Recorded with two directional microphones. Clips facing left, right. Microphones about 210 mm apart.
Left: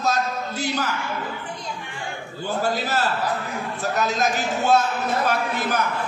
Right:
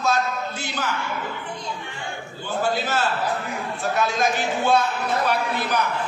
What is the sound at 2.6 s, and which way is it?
A man's voice, 40° left (ahead or behind).